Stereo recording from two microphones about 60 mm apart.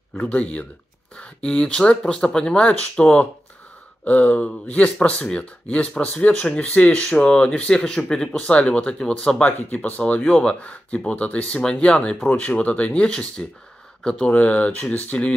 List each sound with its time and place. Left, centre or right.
0.2 s speech: centre
9.5 s speech: left